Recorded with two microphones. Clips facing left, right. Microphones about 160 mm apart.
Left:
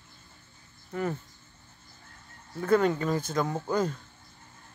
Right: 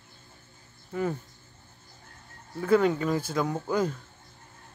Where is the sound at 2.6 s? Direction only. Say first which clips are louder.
Right 1 dB; 5° right (ahead or behind).